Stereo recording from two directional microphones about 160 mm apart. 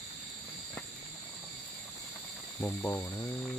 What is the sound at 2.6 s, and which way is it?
Speech, 10° left (ahead or behind).